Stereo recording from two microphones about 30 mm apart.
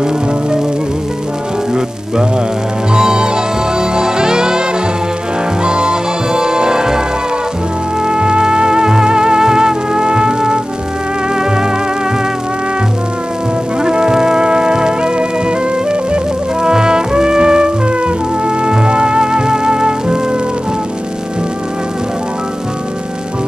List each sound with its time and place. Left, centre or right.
2.9 s music: right
8.0 s music: right
13.8 s music: right